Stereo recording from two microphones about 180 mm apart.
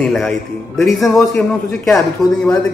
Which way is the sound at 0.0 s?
Centre (ahead or behind).